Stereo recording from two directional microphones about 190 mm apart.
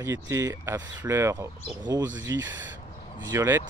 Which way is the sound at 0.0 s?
15° right (ahead or behind).